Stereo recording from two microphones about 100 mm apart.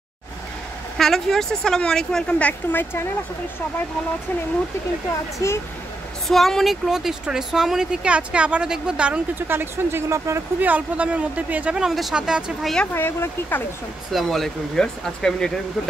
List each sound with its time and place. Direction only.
0.9 s speech: 5° left (ahead or behind); by 3.1 s 20° left (ahead or behind)
5.4 s speech: 35° left (ahead or behind)
6.2 s speech: centre (ahead or behind)
9.5 s speech: 25° right (ahead or behind)
10.6 s speech: 15° right (ahead or behind)
12.9 s speech: 25° left (ahead or behind)
14.1 s speech: centre (ahead or behind)